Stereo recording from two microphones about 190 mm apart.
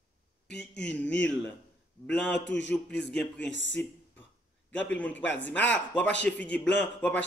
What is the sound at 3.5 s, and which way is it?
Speech, 75° left (ahead or behind).